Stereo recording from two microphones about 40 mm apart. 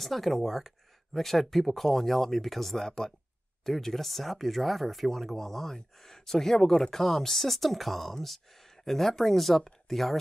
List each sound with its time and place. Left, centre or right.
0.0 s speech: centre